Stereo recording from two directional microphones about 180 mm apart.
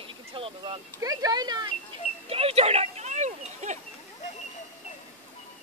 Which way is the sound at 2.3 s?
35° right (ahead or behind).